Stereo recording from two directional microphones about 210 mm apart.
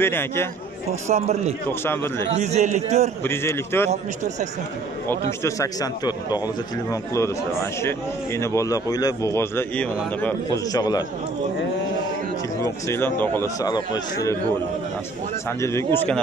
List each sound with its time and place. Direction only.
0.0 s a man's voice: 10° left (ahead or behind)
1.0 s a man's voice: 30° right (ahead or behind)
1.7 s a man's voice: 10° left (ahead or behind)
2.3 s a man's voice: 35° right (ahead or behind)
3.3 s a man's voice: 10° left (ahead or behind)
5.4 s a man's voice: 15° left (ahead or behind)
12.5 s a man's voice: 15° left (ahead or behind)
15.6 s a man's voice: 10° left (ahead or behind)